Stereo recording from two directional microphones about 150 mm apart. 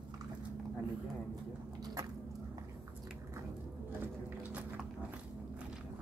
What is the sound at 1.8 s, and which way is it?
Squish, 25° right (ahead or behind).